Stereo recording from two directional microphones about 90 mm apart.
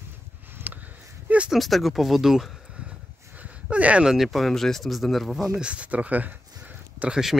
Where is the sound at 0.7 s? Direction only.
20° right (ahead or behind).